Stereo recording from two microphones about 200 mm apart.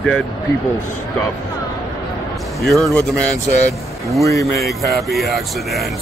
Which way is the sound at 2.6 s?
Centre (ahead or behind).